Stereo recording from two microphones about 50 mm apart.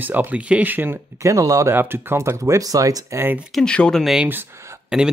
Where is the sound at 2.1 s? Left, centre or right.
Right.